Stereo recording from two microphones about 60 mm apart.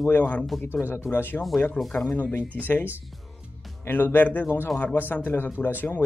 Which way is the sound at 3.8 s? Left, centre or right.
Left.